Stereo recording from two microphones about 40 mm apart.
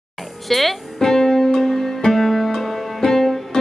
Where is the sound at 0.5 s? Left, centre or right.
Centre.